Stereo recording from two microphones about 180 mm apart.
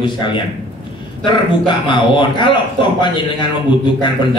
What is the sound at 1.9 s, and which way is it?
A man's voice, 25° left (ahead or behind).